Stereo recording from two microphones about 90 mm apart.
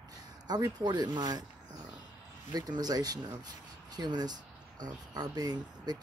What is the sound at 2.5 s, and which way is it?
Speech, 45° right (ahead or behind).